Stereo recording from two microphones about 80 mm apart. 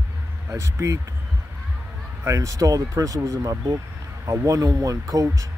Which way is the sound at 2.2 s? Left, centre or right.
Right.